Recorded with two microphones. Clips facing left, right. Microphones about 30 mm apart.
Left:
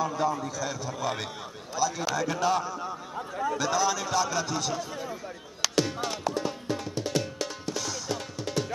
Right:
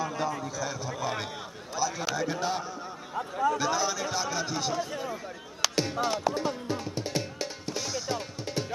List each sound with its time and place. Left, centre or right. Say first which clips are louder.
0.0 s a man's voice: left 3 dB; centre
5.6 s music: even; centre